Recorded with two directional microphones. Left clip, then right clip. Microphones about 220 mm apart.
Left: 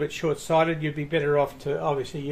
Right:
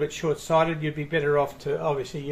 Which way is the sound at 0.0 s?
25° left (ahead or behind).